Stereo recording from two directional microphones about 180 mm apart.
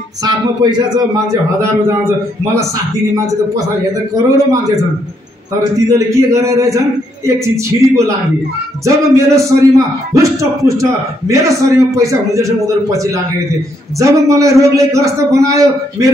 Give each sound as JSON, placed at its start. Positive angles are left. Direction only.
{"t": 0.2, "sound": "a man's voice", "side_deg": -20}
{"t": 4.1, "sound": "a man's voice", "side_deg": -20}
{"t": 5.8, "sound": "a man's voice", "side_deg": -20}